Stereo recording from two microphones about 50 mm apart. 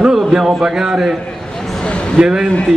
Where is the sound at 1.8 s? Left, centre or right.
Centre.